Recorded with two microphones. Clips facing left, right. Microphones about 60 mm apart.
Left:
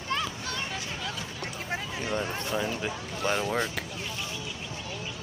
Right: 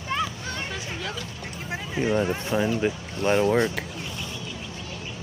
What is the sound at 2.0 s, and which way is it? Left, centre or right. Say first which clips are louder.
Speech: right 10 dB; centre.